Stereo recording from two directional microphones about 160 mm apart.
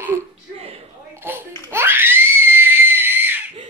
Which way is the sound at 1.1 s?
15° right (ahead or behind).